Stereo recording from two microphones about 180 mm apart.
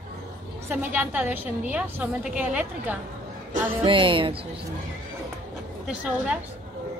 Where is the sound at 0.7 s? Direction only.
10° right (ahead or behind).